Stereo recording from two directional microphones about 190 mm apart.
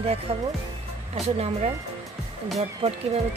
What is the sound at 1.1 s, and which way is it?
Speech, 35° right (ahead or behind).